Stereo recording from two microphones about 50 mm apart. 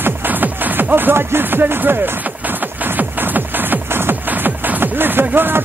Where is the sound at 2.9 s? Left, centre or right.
Right.